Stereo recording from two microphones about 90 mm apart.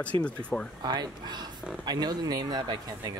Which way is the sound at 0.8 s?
55° right (ahead or behind).